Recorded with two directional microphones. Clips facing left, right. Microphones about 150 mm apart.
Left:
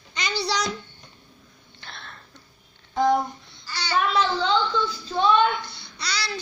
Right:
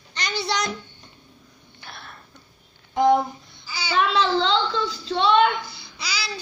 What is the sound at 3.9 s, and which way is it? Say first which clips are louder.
Speech: right 2 dB; 90° right.